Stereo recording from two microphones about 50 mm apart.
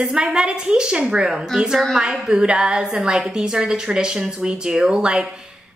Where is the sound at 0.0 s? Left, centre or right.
Centre.